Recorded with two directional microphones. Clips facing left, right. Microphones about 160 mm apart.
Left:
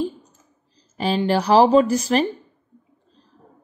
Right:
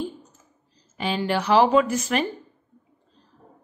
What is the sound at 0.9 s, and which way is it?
A woman's voice, 35° left (ahead or behind).